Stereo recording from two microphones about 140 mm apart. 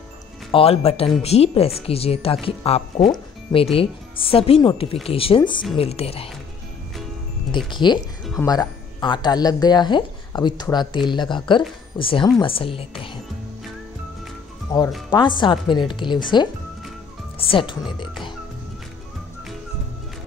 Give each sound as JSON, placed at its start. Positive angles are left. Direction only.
{"t": 0.5, "sound": "speech", "side_deg": 45}
{"t": 5.8, "sound": "speech", "side_deg": 45}
{"t": 7.5, "sound": "speech", "side_deg": 35}
{"t": 14.7, "sound": "speech", "side_deg": 20}
{"t": 15.0, "sound": "speech", "side_deg": 35}